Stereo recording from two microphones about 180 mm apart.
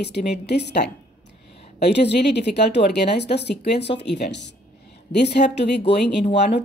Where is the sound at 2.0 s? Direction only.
70° left (ahead or behind).